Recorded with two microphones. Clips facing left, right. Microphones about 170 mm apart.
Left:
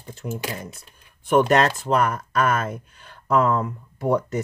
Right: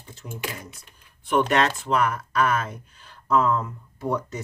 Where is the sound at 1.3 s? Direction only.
45° left (ahead or behind).